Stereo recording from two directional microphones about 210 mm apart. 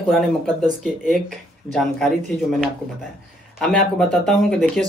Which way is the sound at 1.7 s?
Centre (ahead or behind).